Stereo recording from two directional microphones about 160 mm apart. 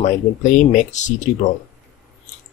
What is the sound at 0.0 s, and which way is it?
Speech, 50° left (ahead or behind).